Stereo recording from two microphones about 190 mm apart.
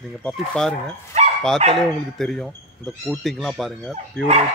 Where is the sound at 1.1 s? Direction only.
35° right (ahead or behind).